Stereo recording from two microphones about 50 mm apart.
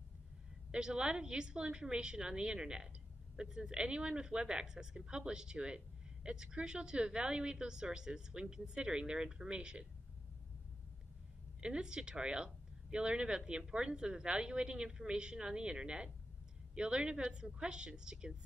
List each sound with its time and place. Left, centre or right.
0.7 s a woman's voice: centre
11.6 s a woman's voice: centre